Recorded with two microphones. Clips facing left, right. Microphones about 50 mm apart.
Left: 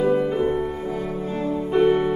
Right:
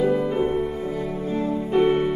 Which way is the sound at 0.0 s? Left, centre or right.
Left.